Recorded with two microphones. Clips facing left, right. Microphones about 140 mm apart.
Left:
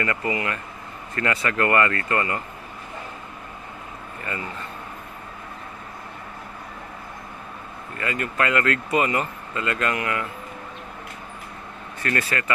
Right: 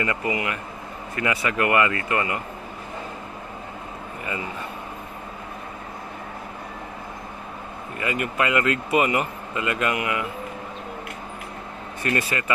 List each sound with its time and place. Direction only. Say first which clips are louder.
0.0 s speech: even; 20° right (ahead or behind)
8.0 s speech: right 1 dB; 15° right (ahead or behind)
12.0 s speech: right 1 dB; 20° right (ahead or behind)